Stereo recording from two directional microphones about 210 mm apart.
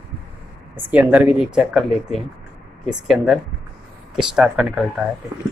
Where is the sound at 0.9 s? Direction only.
5° right (ahead or behind).